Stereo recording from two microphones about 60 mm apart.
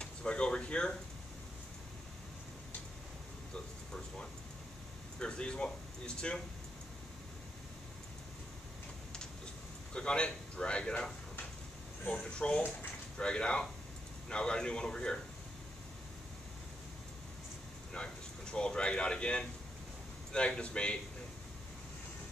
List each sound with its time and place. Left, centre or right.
0.0 s speech: centre
3.5 s vehicle: centre
5.2 s a man's voice: centre
9.9 s a man's voice: centre
17.9 s a man's voice: centre